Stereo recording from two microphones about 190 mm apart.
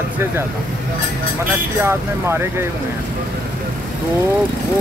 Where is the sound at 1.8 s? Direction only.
15° right (ahead or behind).